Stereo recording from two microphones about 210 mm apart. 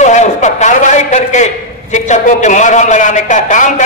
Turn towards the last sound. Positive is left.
turn(degrees=35)  # may be behind; listen again after turning